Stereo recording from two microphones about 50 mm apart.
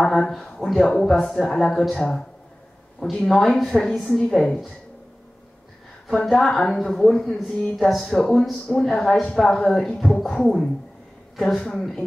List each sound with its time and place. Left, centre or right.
0.0 s speech: centre
3.6 s speech: centre
3.9 s speech: centre
6.2 s speech: centre